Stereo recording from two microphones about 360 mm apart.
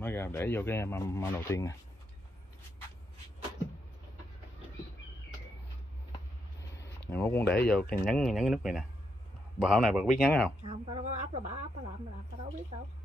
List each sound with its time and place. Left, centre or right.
0.0 s speech: centre
6.8 s a sound: centre
7.9 s speech: centre
10.7 s speech: centre